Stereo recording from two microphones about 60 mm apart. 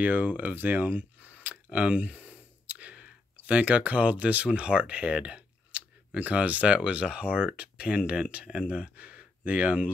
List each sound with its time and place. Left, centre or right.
0.0 s speech: right